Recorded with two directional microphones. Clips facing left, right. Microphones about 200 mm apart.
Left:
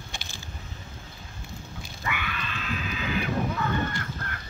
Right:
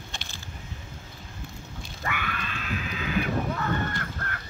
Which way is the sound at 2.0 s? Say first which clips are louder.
Right 1 dB; 45° right (ahead or behind).